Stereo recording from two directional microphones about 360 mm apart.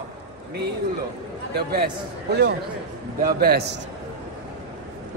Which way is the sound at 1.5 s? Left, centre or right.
Right.